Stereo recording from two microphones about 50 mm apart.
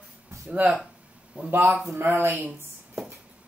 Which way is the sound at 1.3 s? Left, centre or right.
Right.